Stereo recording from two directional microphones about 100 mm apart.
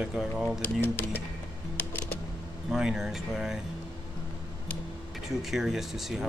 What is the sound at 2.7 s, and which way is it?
Speech, 5° right (ahead or behind).